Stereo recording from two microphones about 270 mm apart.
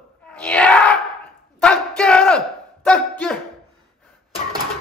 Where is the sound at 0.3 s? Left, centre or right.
Centre.